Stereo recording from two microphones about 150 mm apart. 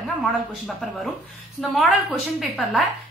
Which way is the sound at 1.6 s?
Centre (ahead or behind).